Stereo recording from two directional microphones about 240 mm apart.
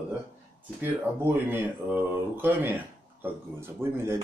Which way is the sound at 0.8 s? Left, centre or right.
Centre.